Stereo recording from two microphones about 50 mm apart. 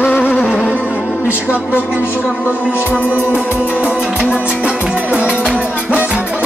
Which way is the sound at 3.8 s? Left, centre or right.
Centre.